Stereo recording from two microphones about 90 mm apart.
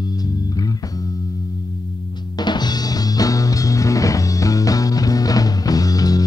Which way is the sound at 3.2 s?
40° left (ahead or behind).